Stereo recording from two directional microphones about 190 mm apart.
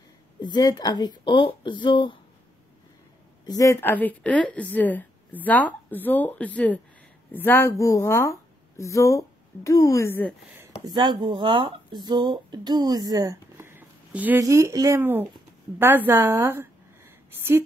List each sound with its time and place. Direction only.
0.4 s a woman's voice: 20° left (ahead or behind)
3.4 s a woman's voice: 20° left (ahead or behind)
10.9 s a woman's voice: 25° right (ahead or behind)